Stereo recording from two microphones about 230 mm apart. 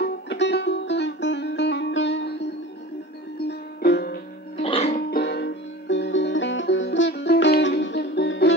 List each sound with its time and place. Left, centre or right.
0.0 s music: left
3.8 s music: left
4.6 s music: left
5.1 s music: left